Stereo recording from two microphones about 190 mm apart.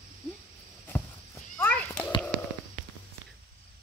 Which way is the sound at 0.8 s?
10° left (ahead or behind).